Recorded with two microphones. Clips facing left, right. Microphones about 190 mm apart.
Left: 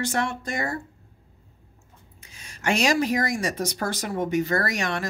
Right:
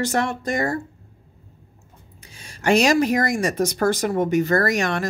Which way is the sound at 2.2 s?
30° right (ahead or behind).